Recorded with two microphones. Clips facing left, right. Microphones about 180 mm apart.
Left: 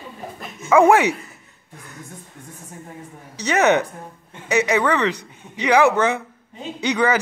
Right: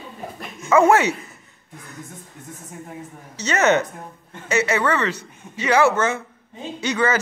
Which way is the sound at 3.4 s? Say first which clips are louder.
Left 1 dB; 15° left (ahead or behind).